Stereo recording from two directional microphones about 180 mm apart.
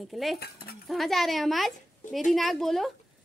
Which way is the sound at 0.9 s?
Centre (ahead or behind).